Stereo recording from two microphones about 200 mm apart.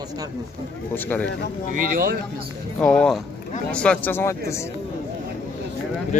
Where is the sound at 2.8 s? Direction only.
5° left (ahead or behind).